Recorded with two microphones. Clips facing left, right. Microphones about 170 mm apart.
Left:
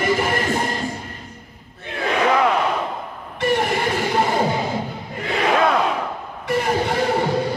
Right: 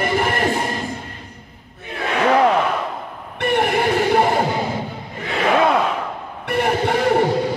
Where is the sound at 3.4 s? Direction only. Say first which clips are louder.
Right 1 dB; 60° right (ahead or behind).